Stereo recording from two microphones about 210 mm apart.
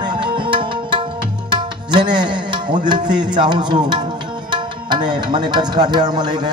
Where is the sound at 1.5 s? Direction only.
20° right (ahead or behind).